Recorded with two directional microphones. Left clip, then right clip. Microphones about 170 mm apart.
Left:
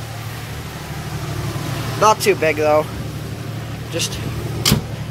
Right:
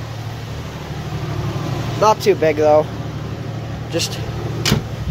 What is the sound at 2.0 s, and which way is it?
Speech, 5° right (ahead or behind).